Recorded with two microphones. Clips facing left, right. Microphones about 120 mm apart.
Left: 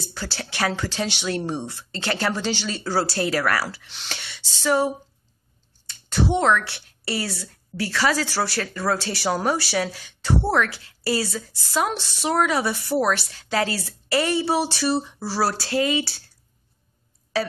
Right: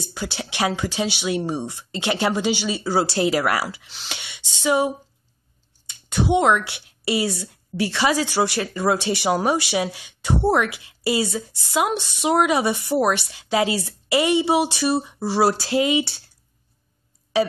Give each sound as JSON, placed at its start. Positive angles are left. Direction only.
{"t": 0.0, "sound": "a woman's voice", "side_deg": -15}